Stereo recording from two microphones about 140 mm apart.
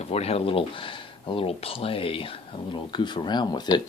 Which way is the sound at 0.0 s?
45° left (ahead or behind).